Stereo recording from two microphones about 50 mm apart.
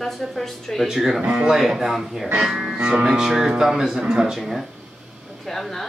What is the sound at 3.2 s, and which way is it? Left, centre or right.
Speech, centre.